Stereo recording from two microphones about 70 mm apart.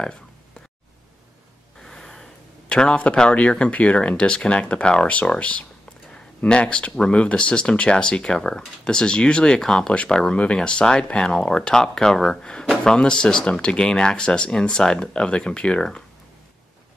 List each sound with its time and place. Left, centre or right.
0.0 s a sound: centre
1.8 s gasp: centre
2.7 s speech: centre